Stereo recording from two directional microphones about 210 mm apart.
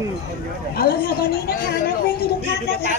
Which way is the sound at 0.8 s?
45° left (ahead or behind).